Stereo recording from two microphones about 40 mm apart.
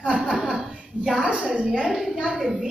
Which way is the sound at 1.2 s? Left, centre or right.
Right.